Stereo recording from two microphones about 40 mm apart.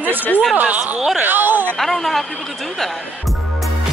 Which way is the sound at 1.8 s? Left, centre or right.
Centre.